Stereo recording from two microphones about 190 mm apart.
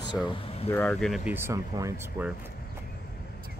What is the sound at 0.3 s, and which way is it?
Speech, 30° left (ahead or behind).